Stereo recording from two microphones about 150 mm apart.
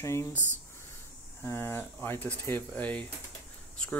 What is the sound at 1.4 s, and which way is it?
Speech, 15° left (ahead or behind).